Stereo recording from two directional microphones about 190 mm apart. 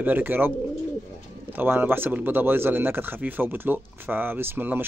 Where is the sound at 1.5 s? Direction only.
10° right (ahead or behind).